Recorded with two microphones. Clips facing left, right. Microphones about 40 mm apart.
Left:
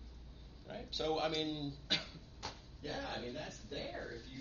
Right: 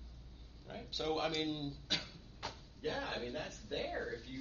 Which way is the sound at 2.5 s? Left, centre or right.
Right.